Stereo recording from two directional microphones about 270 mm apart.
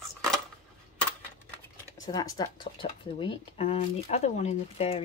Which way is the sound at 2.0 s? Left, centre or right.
Centre.